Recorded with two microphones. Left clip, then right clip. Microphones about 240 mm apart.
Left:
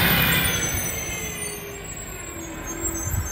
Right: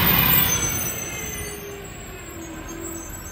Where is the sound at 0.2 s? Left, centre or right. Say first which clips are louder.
Left 1 dB; right.